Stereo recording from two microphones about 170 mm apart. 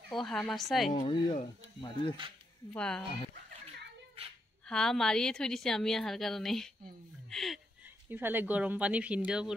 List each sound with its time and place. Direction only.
0.1 s a woman's voice: centre (ahead or behind)
1.0 s speech: 25° left (ahead or behind)
2.7 s a woman's voice: 5° left (ahead or behind)
4.6 s a woman's voice: 5° left (ahead or behind)
8.1 s speech: 10° right (ahead or behind)